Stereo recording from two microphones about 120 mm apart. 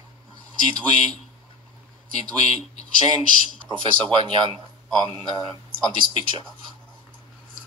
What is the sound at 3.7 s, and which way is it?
Speech, 45° right (ahead or behind).